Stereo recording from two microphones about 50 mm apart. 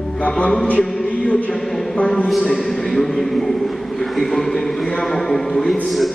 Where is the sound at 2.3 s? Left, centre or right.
Centre.